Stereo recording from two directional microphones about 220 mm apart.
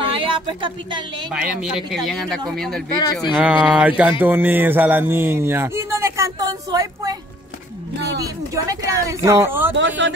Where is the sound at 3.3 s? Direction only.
5° right (ahead or behind).